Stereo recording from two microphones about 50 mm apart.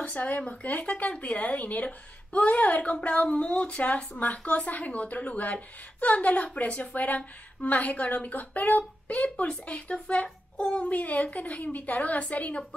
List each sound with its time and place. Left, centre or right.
0.0 s a woman's voice: left
10.9 s a woman's voice: left